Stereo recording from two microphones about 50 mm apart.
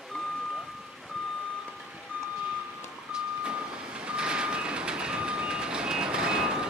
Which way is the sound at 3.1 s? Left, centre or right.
Centre.